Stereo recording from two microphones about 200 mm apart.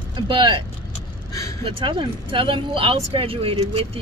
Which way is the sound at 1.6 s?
25° right (ahead or behind).